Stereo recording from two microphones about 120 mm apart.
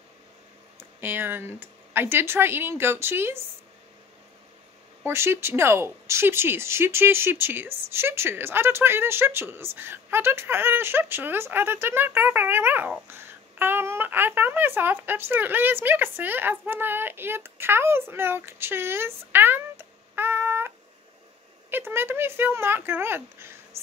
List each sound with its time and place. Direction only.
0.7 s speech: 15° right (ahead or behind)
5.0 s speech: 20° right (ahead or behind)